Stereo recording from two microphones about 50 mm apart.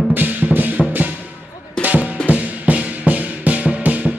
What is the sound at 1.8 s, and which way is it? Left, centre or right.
Music, right.